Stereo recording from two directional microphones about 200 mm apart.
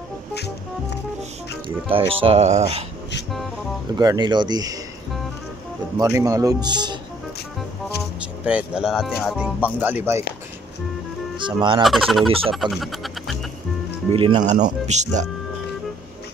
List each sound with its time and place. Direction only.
0.3 s music: 55° left (ahead or behind)
1.9 s speech: 25° right (ahead or behind)
4.0 s speech: 20° right (ahead or behind)
5.9 s speech: 15° right (ahead or behind)
8.5 s speech: 5° right (ahead or behind)
11.4 s speech: 25° right (ahead or behind)
11.8 s speech: centre (ahead or behind)
14.1 s speech: 25° right (ahead or behind)